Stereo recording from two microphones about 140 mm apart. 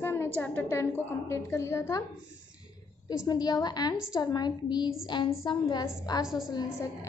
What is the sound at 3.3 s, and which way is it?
A woman's voice, 30° left (ahead or behind).